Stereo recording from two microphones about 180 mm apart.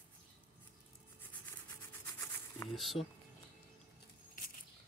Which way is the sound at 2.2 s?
15° left (ahead or behind).